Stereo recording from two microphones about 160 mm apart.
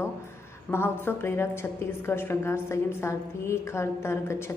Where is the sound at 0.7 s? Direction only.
15° left (ahead or behind).